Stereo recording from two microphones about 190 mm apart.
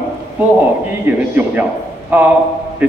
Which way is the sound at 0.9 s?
10° right (ahead or behind).